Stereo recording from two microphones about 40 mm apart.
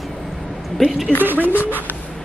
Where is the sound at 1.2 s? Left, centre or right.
Right.